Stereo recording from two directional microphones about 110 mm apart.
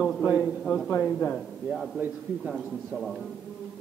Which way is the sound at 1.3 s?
Centre (ahead or behind).